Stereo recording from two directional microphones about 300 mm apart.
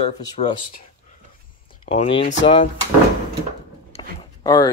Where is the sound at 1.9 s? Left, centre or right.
Centre.